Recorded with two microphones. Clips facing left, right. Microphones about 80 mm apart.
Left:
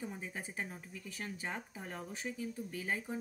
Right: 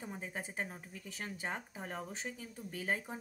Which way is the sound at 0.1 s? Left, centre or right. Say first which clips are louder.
Right 1 dB; right.